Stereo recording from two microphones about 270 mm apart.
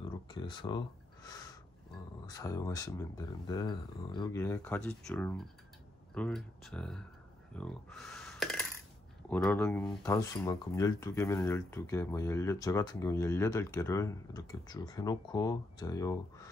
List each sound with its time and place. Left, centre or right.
0.3 s speech: centre